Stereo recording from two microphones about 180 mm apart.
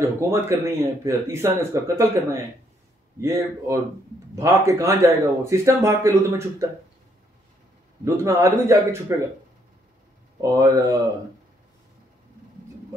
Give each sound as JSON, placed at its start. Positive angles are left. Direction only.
{"t": 0.2, "sound": "speech", "side_deg": -15}
{"t": 8.0, "sound": "speech", "side_deg": -15}
{"t": 10.4, "sound": "speech", "side_deg": -20}